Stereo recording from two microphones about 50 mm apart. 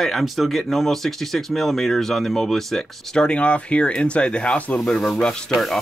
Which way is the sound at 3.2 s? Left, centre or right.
Left.